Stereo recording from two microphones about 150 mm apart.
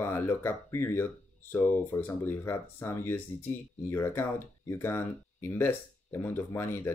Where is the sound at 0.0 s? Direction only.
15° left (ahead or behind).